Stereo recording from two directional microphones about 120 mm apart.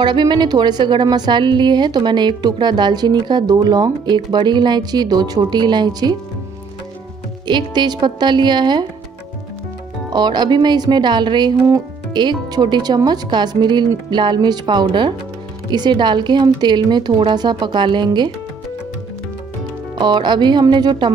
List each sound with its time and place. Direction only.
0.0 s a woman's voice: 40° right (ahead or behind)
7.4 s a woman's voice: 40° right (ahead or behind)
10.1 s a woman's voice: 35° right (ahead or behind)
20.0 s a woman's voice: 40° right (ahead or behind)